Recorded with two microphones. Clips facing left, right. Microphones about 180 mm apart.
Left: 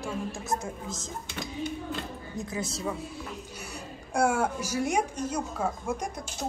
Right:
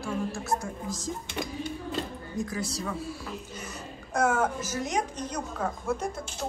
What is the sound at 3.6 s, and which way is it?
A woman's voice, 10° left (ahead or behind).